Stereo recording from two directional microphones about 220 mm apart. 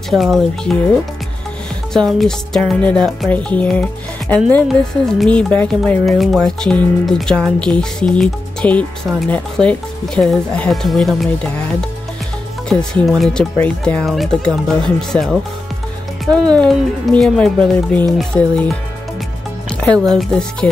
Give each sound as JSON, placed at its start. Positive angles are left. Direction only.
{"t": 0.1, "sound": "speech", "side_deg": 0}
{"t": 2.0, "sound": "speech", "side_deg": 0}
{"t": 12.6, "sound": "speech", "side_deg": 0}
{"t": 19.8, "sound": "speech", "side_deg": 5}